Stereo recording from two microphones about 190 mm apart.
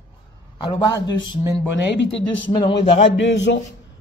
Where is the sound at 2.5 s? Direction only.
25° left (ahead or behind).